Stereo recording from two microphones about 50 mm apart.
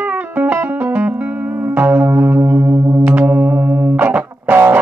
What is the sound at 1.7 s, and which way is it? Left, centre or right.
Music, right.